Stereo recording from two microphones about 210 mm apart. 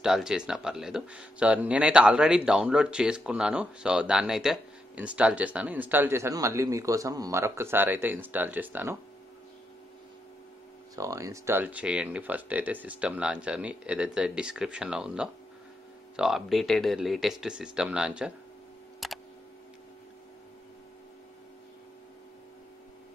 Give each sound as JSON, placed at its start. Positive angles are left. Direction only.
{"t": 0.0, "sound": "speech", "side_deg": -5}
{"t": 11.0, "sound": "speech", "side_deg": -15}
{"t": 19.0, "sound": "a sound", "side_deg": 0}